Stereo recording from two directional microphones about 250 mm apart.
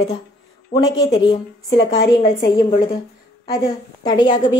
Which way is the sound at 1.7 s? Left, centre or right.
Left.